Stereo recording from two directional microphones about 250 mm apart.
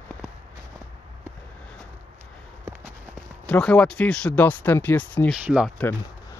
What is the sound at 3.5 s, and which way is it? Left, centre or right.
Speech, centre.